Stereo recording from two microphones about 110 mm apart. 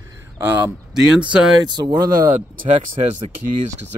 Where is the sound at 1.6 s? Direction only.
40° right (ahead or behind).